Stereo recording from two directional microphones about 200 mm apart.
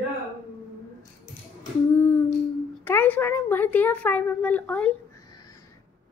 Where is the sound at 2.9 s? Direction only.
10° left (ahead or behind).